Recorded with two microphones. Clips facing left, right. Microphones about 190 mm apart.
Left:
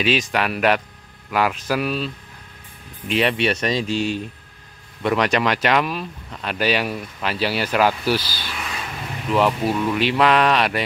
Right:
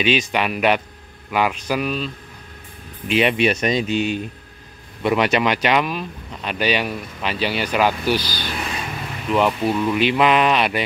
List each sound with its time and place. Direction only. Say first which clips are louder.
0.0 s speech: right 1 dB; centre (ahead or behind)
3.1 s speech: right 2 dB; 5° right (ahead or behind)
3.7 s speech: right 2 dB; 30° left (ahead or behind)
5.0 s speech: right 1 dB; 5° right (ahead or behind)